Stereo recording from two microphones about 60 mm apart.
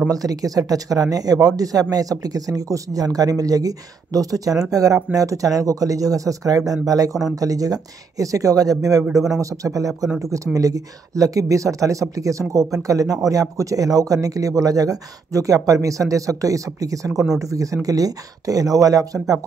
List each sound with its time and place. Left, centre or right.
0.1 s speech: right
5.1 s speech: right
9.4 s speech: right
17.1 s speech: centre
17.4 s speech: right
17.8 s speech: right